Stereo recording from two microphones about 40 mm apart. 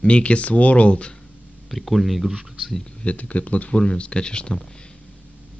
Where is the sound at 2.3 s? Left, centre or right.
Centre.